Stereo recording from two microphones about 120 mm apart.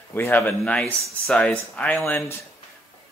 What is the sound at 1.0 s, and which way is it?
Speech, centre (ahead or behind).